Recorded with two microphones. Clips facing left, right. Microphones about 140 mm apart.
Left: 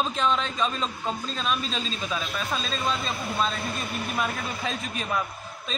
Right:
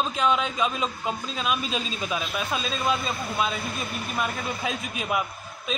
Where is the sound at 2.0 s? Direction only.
25° right (ahead or behind).